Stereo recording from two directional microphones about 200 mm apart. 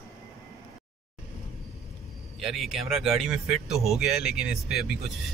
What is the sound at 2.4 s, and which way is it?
Speech, centre (ahead or behind).